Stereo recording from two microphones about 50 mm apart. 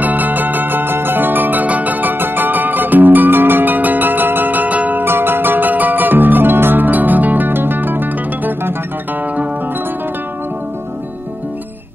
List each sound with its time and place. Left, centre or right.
0.0 s music: right
5.0 s music: right